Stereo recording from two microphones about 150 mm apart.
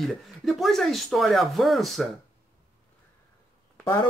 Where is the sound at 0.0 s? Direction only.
Centre (ahead or behind).